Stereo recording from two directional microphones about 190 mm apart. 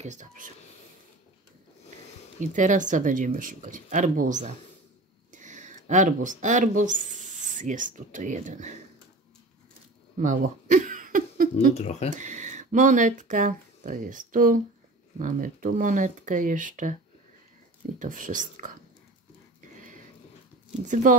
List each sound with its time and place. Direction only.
0.0 s speech: 40° right (ahead or behind)
2.4 s speech: 40° right (ahead or behind)
10.1 s a sound: 45° right (ahead or behind)
11.7 s speech: 35° left (ahead or behind)
12.1 s speech: 40° right (ahead or behind)
17.9 s speech: 45° right (ahead or behind)
20.8 s speech: 40° right (ahead or behind)